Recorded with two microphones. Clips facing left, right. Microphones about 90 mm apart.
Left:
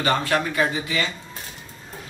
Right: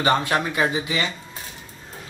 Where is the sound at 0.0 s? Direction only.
20° right (ahead or behind).